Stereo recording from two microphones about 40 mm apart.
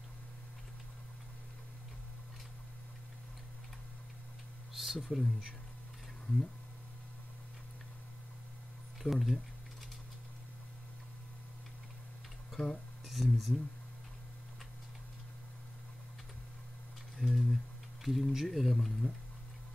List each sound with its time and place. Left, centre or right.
4.7 s speech: centre
9.0 s speech: centre
12.6 s speech: left
13.0 s speech: centre
17.2 s typing: centre
18.0 s speech: centre